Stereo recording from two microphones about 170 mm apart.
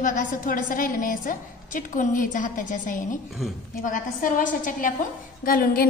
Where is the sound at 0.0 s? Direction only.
50° left (ahead or behind).